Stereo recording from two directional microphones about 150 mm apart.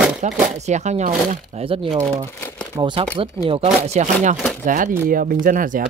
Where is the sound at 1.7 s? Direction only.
35° right (ahead or behind).